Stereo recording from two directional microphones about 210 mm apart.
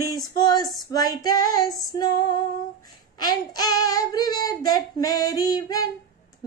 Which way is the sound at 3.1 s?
20° left (ahead or behind).